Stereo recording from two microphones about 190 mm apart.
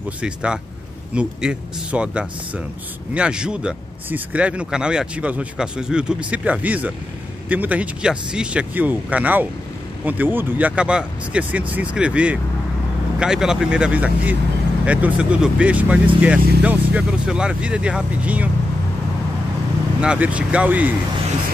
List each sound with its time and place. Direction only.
0.2 s speech: 5° right (ahead or behind)
20.0 s speech: 5° right (ahead or behind)